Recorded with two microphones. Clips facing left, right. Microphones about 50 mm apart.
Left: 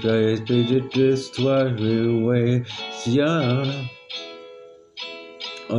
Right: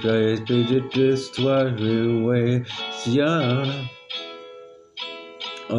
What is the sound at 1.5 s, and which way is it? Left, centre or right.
Music, centre.